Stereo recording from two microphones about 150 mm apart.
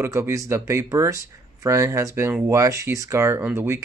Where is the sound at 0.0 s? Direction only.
15° right (ahead or behind).